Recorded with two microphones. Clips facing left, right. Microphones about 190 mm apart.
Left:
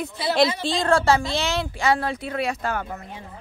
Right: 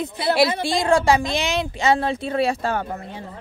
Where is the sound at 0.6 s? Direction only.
15° right (ahead or behind); by 2.8 s 30° right (ahead or behind).